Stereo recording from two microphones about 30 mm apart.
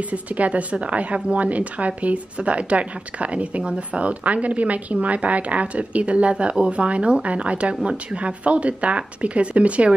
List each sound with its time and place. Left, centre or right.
0.1 s a woman's voice: right